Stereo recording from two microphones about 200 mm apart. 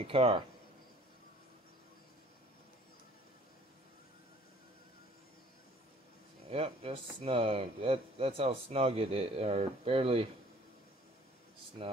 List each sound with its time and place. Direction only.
0.0 s speech: 25° right (ahead or behind)
6.5 s speech: 30° right (ahead or behind)